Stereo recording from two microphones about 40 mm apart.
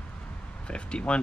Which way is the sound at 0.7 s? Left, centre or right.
Left.